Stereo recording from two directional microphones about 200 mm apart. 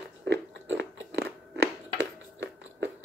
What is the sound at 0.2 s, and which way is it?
Crunch, 60° right (ahead or behind).